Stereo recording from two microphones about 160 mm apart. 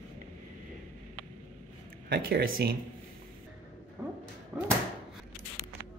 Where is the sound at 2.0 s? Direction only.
75° right (ahead or behind).